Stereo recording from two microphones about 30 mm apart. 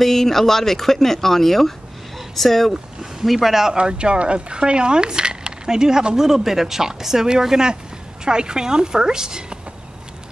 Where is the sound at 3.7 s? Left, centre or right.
Right.